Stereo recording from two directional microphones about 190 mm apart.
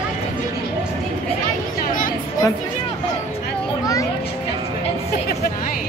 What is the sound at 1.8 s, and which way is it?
Chatter, 45° left (ahead or behind).